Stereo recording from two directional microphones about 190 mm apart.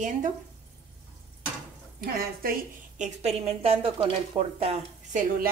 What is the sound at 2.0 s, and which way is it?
Speech, 50° right (ahead or behind).